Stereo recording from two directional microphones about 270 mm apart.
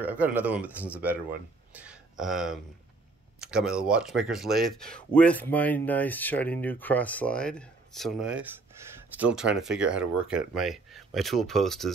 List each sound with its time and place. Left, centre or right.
0.0 s speech: centre
1.7 s a sound: centre
3.3 s speech: centre